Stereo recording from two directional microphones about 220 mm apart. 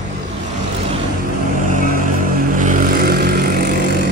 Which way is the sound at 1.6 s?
35° right (ahead or behind).